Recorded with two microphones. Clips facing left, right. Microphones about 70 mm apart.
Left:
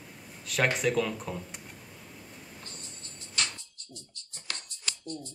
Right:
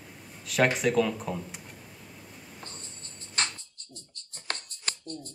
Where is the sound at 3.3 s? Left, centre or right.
Right.